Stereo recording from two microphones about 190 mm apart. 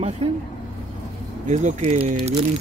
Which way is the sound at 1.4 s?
40° right (ahead or behind).